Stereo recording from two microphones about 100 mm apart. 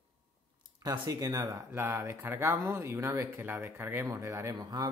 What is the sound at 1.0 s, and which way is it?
Speech, 35° right (ahead or behind).